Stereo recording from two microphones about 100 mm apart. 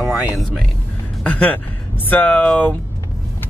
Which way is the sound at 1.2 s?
15° left (ahead or behind).